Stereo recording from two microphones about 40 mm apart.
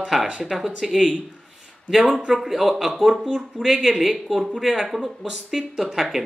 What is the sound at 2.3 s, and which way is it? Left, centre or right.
Speech, centre.